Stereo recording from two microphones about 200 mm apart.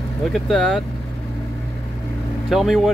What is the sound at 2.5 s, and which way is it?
Speech, centre (ahead or behind).